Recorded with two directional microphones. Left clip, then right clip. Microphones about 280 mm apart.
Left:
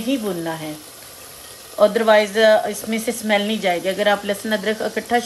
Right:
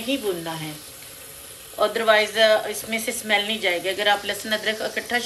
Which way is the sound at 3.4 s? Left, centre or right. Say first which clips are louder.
Left 3 dB; left.